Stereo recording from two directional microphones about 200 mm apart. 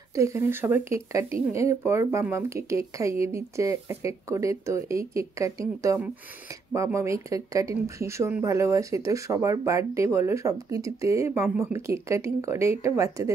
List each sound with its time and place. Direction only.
0.1 s speech: 15° right (ahead or behind)